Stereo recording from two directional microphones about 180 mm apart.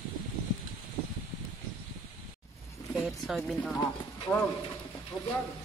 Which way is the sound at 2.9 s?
Centre (ahead or behind).